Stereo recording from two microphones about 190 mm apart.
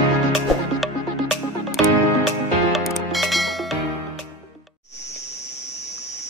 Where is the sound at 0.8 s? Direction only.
Centre (ahead or behind).